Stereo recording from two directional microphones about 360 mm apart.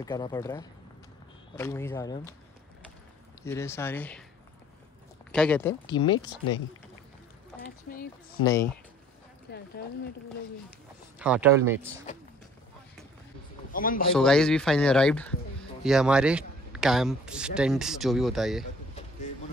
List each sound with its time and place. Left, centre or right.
0.0 s speech: centre
3.4 s speech: centre
5.3 s speech: centre
6.1 s speech: left
7.6 s speech: left
9.5 s speech: left
11.1 s speech: centre
13.7 s a man's voice: left
14.1 s speech: centre